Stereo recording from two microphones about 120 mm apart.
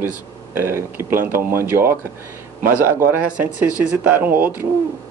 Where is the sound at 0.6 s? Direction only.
20° right (ahead or behind).